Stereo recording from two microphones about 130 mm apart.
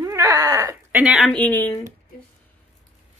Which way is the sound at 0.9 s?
10° right (ahead or behind).